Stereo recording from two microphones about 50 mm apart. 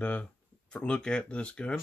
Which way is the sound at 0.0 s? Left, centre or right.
Left.